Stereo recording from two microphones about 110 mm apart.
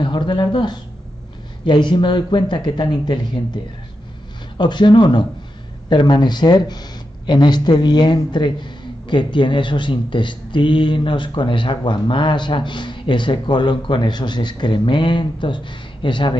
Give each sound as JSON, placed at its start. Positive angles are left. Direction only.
{"t": 0.0, "sound": "speech", "side_deg": 45}
{"t": 4.6, "sound": "speech", "side_deg": 45}